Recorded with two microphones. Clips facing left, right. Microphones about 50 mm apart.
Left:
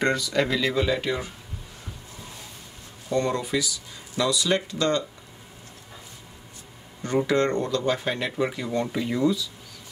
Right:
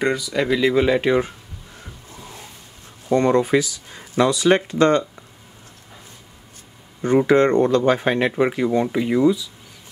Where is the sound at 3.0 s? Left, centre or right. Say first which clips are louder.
Right 8 dB; right.